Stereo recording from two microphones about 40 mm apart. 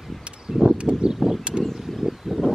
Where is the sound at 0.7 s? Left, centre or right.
Right.